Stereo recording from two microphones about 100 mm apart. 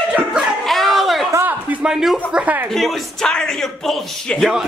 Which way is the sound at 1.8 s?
5° right (ahead or behind).